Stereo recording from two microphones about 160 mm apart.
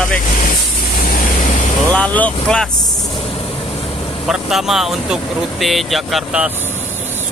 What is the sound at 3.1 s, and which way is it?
Vehicle, 35° left (ahead or behind).